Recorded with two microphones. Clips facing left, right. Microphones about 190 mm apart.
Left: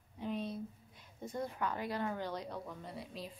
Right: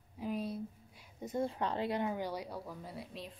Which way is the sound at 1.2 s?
25° right (ahead or behind).